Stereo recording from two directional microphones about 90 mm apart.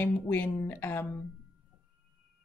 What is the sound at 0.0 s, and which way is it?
Speech, 20° left (ahead or behind).